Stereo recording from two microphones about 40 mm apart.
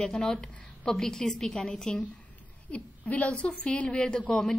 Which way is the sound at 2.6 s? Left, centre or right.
Left.